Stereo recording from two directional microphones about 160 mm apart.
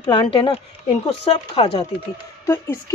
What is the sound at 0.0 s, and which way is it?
Speech, 30° left (ahead or behind).